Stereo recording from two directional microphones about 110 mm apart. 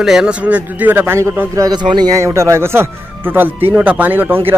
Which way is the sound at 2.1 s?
25° right (ahead or behind).